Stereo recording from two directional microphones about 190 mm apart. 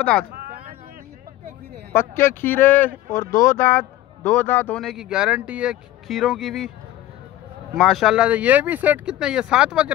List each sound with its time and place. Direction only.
0.0 s speech: 5° left (ahead or behind)
0.3 s a sound: 55° right (ahead or behind)
1.9 s speech: 10° left (ahead or behind)
3.3 s speech: 45° left (ahead or behind)
3.5 s a man's voice: 10° left (ahead or behind)
7.7 s a man's voice: centre (ahead or behind)